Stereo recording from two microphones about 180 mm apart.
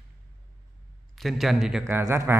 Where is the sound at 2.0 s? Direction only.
15° right (ahead or behind).